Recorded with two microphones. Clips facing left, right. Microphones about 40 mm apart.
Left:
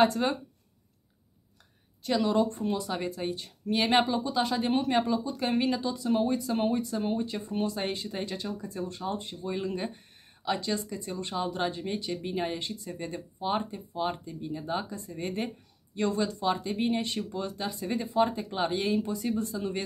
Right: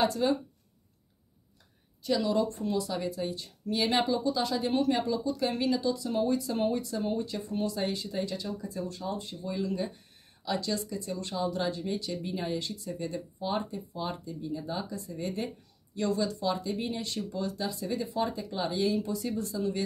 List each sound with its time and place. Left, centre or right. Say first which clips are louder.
0.0 s a woman's voice: left 2 dB; left
2.0 s a woman's voice: left 2 dB; left